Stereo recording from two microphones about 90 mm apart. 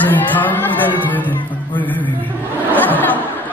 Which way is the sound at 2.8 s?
20° left (ahead or behind).